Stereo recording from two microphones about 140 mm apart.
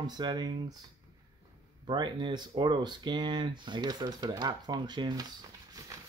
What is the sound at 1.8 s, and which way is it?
Speech, 35° right (ahead or behind).